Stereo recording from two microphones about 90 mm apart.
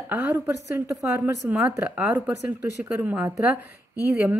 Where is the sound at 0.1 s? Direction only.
20° right (ahead or behind).